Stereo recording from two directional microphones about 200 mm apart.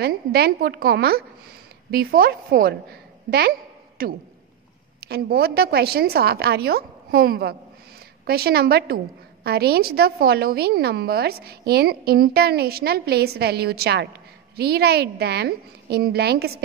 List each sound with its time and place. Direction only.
0.0 s a woman's voice: 50° right (ahead or behind)